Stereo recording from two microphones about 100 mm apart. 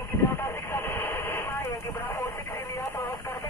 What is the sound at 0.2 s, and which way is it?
Radio, 25° left (ahead or behind).